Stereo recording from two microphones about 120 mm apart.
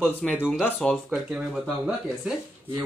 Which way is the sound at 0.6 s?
10° left (ahead or behind).